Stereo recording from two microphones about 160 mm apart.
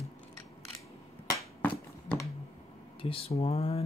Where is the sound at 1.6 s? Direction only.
10° left (ahead or behind).